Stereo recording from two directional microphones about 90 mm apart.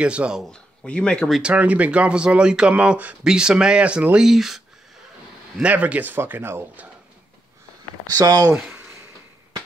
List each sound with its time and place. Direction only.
0.0 s speech: 10° right (ahead or behind)
0.4 s speech: 10° left (ahead or behind)
1.4 s speech: 15° right (ahead or behind)
5.6 s a man's voice: 15° right (ahead or behind)
8.1 s speech: 45° right (ahead or behind)